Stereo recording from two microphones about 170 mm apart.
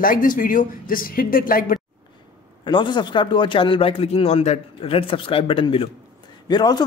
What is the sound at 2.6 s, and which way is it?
A man's voice, 30° left (ahead or behind).